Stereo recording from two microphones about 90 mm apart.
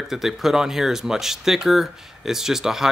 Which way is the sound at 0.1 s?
Centre (ahead or behind).